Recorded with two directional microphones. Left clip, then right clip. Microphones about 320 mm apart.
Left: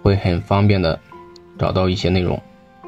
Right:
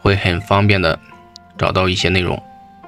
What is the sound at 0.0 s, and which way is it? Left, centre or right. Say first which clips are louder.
Speech: right 3 dB; right.